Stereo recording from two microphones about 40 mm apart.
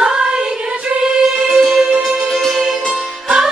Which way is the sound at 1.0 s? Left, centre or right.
Centre.